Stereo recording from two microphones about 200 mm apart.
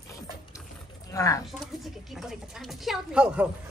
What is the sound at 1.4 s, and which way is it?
Speech, centre (ahead or behind).